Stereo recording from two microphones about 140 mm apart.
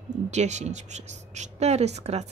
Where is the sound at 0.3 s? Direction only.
55° right (ahead or behind).